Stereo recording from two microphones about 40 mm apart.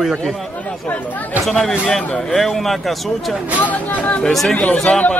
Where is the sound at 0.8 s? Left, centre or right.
Left.